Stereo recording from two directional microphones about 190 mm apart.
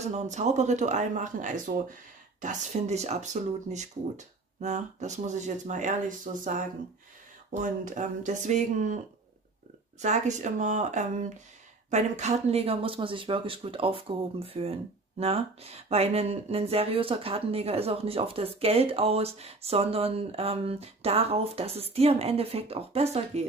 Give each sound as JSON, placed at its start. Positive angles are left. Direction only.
{"t": 0.0, "sound": "speech", "side_deg": -35}
{"t": 10.0, "sound": "speech", "side_deg": -35}